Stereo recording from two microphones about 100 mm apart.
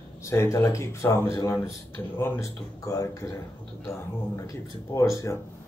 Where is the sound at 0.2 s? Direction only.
30° left (ahead or behind).